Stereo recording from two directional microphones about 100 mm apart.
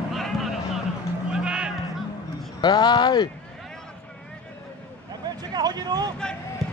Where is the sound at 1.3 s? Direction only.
10° right (ahead or behind).